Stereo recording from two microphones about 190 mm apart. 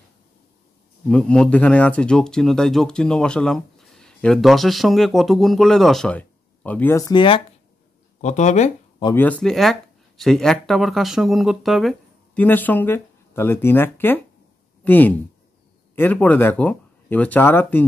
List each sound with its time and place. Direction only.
1.0 s speech: 5° left (ahead or behind); by 7.4 s 25° left (ahead or behind)
8.2 s speech: 40° left (ahead or behind)
9.0 s speech: 10° left (ahead or behind)